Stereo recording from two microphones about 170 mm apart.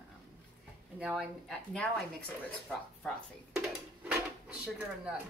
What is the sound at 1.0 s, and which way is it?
Speech, centre (ahead or behind).